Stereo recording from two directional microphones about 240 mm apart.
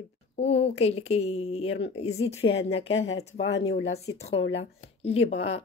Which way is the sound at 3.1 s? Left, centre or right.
Left.